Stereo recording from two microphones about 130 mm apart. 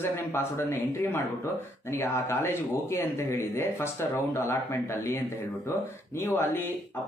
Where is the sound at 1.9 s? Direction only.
20° left (ahead or behind).